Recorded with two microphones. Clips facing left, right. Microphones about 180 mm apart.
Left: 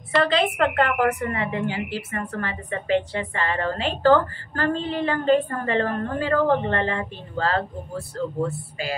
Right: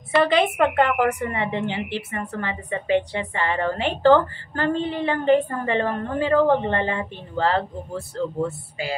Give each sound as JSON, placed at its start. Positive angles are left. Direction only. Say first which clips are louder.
{"t": 0.2, "sound": "a woman's voice", "louder": "right 2 dB", "side_deg": -15}